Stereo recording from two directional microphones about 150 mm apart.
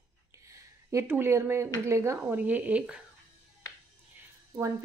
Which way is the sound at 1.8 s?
20° right (ahead or behind).